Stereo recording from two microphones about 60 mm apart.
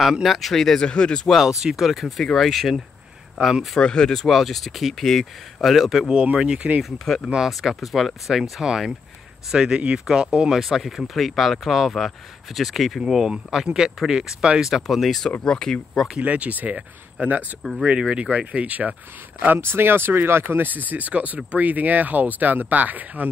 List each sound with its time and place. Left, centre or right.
0.0 s speech: centre
0.8 s speech: centre
1.6 s speech: centre
3.8 s speech: centre
6.1 s speech: centre
6.8 s speech: centre
14.7 s speech: centre
16.2 s speech: right
19.4 s speech: right